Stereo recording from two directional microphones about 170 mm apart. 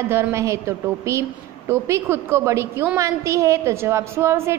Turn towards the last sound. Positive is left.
turn(degrees=-15)  # may be behind; listen again after turning